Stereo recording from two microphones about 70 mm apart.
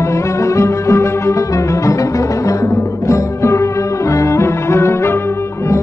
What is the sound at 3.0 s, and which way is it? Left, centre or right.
Music, left.